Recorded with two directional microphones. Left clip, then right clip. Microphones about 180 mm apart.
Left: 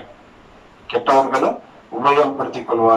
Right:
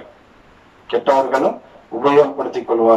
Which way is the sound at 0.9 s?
35° right (ahead or behind).